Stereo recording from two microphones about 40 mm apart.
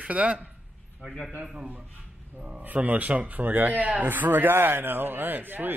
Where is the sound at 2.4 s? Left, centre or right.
Centre.